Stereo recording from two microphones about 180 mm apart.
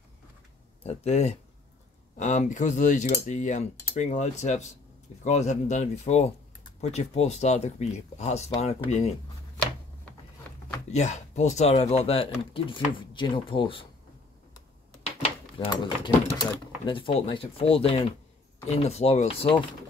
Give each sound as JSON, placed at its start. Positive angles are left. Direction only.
{"t": 0.8, "sound": "speech", "side_deg": 35}
{"t": 10.9, "sound": "speech", "side_deg": 40}
{"t": 15.6, "sound": "speech", "side_deg": 25}